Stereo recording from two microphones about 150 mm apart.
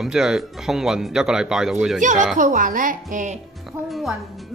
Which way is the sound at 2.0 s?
55° right (ahead or behind).